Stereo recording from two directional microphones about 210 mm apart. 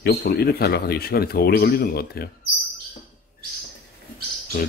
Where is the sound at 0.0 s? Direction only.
50° left (ahead or behind).